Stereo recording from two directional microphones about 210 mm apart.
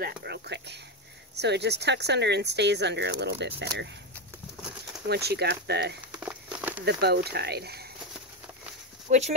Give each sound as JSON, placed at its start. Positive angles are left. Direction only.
{"t": 0.0, "sound": "speech", "side_deg": -50}
{"t": 5.0, "sound": "speech", "side_deg": -50}
{"t": 6.1, "sound": "crumpling", "side_deg": -10}
{"t": 6.8, "sound": "speech", "side_deg": -50}
{"t": 9.1, "sound": "speech", "side_deg": -35}